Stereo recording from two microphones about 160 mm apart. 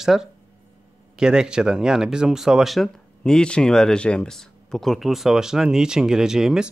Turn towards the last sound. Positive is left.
turn(degrees=-5)  # may be behind; listen again after turning